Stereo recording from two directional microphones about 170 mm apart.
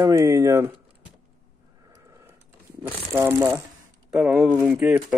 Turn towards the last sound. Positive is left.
turn(degrees=-5)  # may be behind; listen again after turning